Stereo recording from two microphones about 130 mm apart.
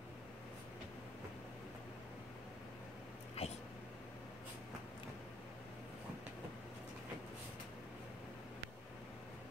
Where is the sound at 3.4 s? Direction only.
50° left (ahead or behind).